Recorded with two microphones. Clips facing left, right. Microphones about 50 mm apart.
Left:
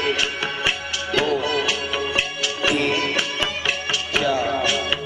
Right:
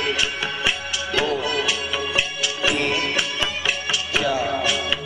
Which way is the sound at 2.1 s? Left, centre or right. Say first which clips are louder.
Even; centre.